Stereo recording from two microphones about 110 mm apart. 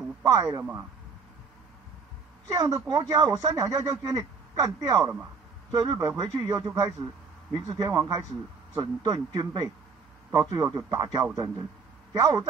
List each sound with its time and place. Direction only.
0.2 s speech: 35° right (ahead or behind)
2.5 s speech: 30° right (ahead or behind)